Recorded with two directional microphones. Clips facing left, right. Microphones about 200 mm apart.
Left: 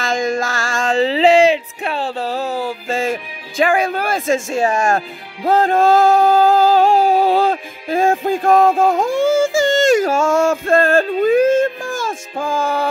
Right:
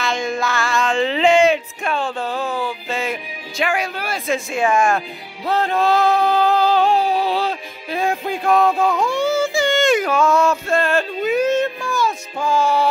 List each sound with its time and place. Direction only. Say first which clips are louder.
0.3 s music: left 1 dB; 45° left (ahead or behind)